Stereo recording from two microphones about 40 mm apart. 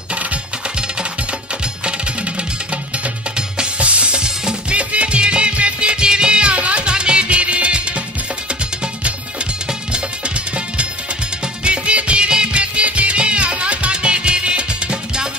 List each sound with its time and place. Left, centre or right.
1.9 s music: right
3.8 s music: right
9.7 s music: right